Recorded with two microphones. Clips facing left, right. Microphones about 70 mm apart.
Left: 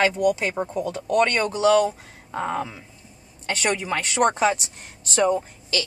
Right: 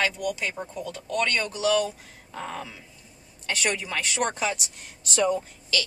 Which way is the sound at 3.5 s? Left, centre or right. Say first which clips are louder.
Left 4 dB; left.